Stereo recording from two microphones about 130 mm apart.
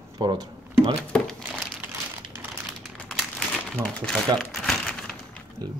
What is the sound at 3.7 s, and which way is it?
Crumpling, 5° left (ahead or behind).